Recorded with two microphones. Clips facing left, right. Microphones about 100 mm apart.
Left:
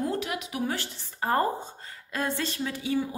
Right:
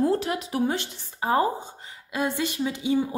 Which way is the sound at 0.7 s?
20° right (ahead or behind).